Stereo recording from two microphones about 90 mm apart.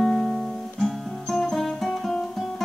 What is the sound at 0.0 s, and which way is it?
Guitar, centre (ahead or behind).